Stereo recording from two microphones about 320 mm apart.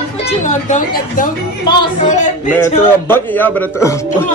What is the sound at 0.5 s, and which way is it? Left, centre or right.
Speech, left.